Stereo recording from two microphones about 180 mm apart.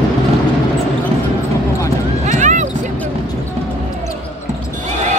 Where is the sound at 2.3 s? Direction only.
45° right (ahead or behind).